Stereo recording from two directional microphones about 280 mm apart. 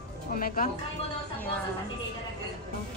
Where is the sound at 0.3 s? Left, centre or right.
Left.